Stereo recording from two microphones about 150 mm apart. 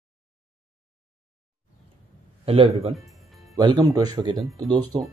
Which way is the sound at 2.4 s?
40° right (ahead or behind).